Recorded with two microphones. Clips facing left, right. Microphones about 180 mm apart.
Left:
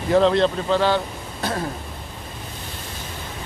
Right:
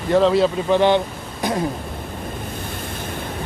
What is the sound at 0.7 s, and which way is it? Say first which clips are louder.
Speech: right 4 dB; 20° right (ahead or behind).